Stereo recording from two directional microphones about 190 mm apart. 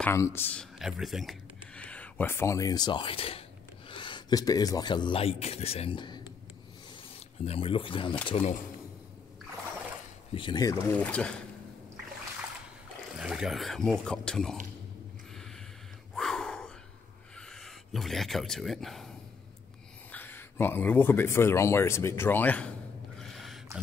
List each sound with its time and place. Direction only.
0.0 s speech: 15° left (ahead or behind)
7.4 s a man's voice: 30° left (ahead or behind)
10.3 s speech: 25° left (ahead or behind)
11.0 s speech: 5° left (ahead or behind)
13.2 s speech: 5° right (ahead or behind)
16.2 s gasp: centre (ahead or behind)
17.4 s speech: 5° left (ahead or behind)
20.1 s speech: 10° left (ahead or behind)
23.1 s a sound: centre (ahead or behind)